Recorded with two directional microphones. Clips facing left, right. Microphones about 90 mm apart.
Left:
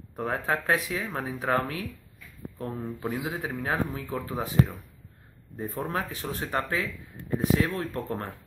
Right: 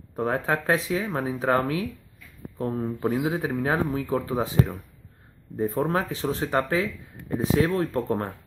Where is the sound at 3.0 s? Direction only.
25° right (ahead or behind).